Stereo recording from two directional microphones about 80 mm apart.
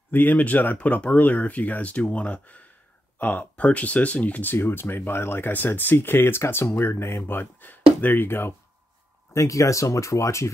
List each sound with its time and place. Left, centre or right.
0.1 s speech: left
9.3 s speech: left